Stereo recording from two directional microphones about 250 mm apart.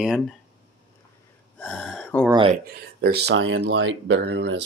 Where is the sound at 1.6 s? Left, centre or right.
Centre.